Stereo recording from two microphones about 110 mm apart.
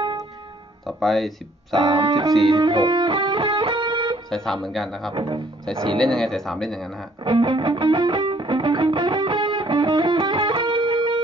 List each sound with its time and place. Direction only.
0.8 s speech: centre (ahead or behind)
1.8 s music: 45° right (ahead or behind)
4.3 s speech: 5° left (ahead or behind)
5.1 s music: 50° right (ahead or behind)
5.9 s speech: 5° left (ahead or behind)
7.2 s music: 50° right (ahead or behind)